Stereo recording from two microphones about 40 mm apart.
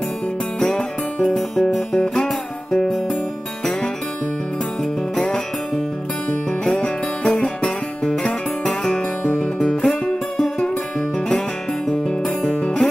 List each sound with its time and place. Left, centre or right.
0.7 s music: centre
7.2 s music: centre
7.6 s music: left
9.8 s music: centre
12.4 s music: left